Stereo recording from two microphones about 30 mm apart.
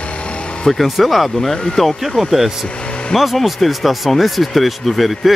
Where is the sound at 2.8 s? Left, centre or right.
Left.